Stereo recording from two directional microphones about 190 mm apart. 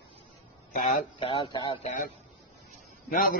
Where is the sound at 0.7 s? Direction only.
40° left (ahead or behind).